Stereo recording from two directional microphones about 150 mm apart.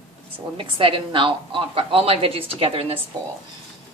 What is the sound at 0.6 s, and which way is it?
A woman's voice, 35° right (ahead or behind).